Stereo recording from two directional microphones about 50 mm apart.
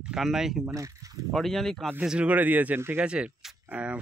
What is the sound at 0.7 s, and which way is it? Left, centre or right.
Speech, right.